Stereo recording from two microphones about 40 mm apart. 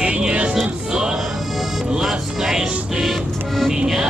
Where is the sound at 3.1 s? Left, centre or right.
Centre.